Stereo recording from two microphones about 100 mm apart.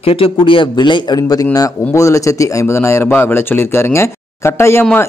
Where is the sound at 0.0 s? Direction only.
65° left (ahead or behind).